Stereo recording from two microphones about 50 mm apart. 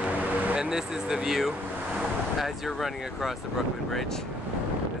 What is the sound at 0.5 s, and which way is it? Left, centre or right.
Speech, centre.